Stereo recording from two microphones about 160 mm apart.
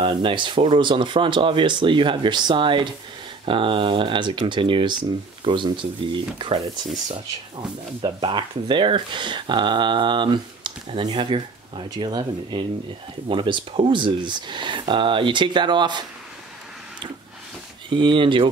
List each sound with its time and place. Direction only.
0.0 s speech: 30° right (ahead or behind)
17.8 s speech: 30° right (ahead or behind)